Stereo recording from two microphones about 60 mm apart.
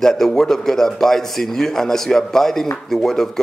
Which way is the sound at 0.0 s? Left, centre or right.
Centre.